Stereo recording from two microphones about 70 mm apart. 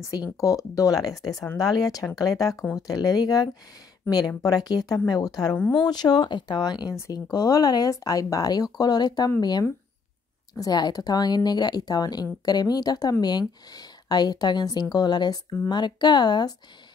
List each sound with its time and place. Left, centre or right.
0.4 s speech: left
4.1 s speech: left
4.4 s speech: left
5.7 s speech: left
13.2 s speech: left